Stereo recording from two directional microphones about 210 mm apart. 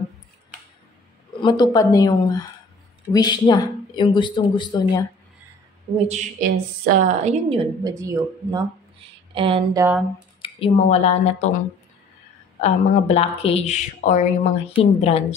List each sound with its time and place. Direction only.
1.4 s speech: 20° left (ahead or behind)
6.0 s a woman's voice: 40° right (ahead or behind)
7.8 s speech: 15° right (ahead or behind)
9.8 s speech: 5° right (ahead or behind)
10.4 s speech: 30° left (ahead or behind)
12.5 s speech: 30° left (ahead or behind)